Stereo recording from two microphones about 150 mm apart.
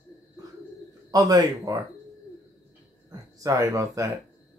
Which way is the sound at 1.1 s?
25° right (ahead or behind).